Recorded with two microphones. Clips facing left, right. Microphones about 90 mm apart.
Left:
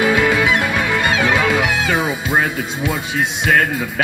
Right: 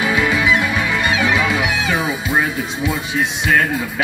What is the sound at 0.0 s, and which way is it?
Music, 55° left (ahead or behind).